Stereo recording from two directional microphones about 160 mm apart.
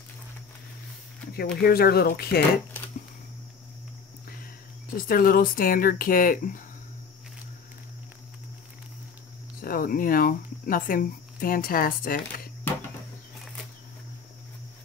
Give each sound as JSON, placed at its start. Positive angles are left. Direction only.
{"t": 1.3, "sound": "speech", "side_deg": 75}
{"t": 4.9, "sound": "speech", "side_deg": 65}
{"t": 9.6, "sound": "speech", "side_deg": 65}